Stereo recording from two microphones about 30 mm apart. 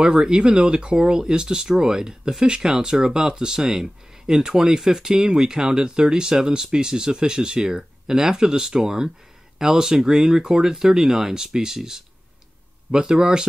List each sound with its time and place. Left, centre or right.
0.0 s speech: right